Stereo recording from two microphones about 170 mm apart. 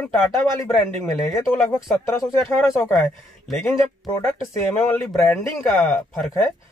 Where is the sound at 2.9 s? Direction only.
Centre (ahead or behind).